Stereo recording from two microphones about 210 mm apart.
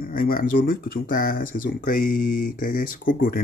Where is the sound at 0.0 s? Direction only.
45° left (ahead or behind).